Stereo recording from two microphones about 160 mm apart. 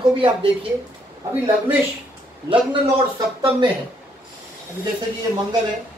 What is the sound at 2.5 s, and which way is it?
A man's voice, 30° right (ahead or behind).